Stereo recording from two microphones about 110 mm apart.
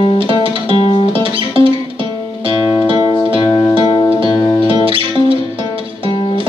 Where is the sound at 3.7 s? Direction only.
50° right (ahead or behind).